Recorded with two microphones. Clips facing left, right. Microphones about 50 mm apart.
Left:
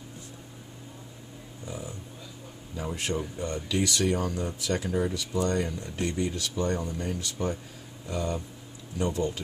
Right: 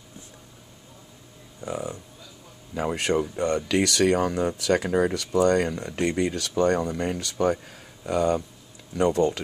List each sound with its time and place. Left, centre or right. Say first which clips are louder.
1.6 s speech: right 8 dB; right